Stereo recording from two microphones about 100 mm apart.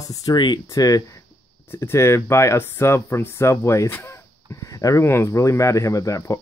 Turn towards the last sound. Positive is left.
turn(degrees=30)  # may be behind; listen again after turning